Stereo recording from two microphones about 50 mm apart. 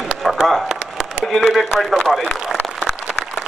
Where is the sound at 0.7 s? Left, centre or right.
Centre.